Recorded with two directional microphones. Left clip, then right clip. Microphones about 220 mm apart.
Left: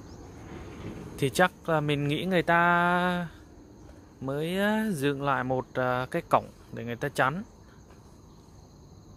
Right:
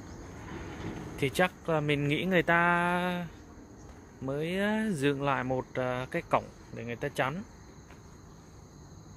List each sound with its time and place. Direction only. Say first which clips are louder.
1.1 s speech: left 4 dB; 25° left (ahead or behind)
4.3 s speech: left 3 dB; 20° left (ahead or behind)